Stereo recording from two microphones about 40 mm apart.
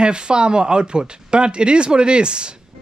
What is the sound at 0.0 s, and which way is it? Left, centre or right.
Speech, right.